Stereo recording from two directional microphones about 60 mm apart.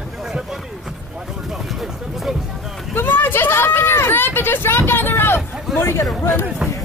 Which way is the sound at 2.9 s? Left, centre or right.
Left.